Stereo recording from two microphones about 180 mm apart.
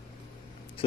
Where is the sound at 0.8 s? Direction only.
30° left (ahead or behind).